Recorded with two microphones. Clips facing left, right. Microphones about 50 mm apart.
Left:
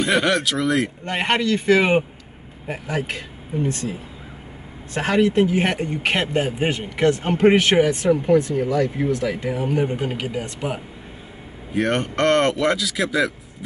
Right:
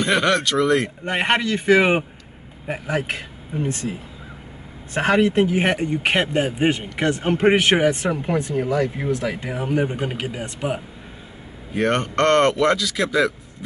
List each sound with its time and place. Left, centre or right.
0.0 s speech: centre
1.0 s a man's voice: centre
4.9 s a man's voice: right
9.8 s a man's voice: centre
11.7 s speech: centre